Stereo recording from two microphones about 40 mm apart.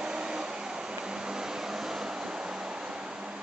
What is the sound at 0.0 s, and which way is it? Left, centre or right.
Vehicle, right.